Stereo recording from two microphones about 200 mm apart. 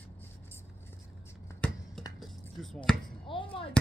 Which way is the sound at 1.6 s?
5° left (ahead or behind).